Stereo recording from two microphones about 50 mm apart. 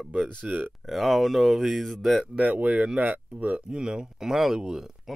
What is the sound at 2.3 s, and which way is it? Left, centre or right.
Speech, right.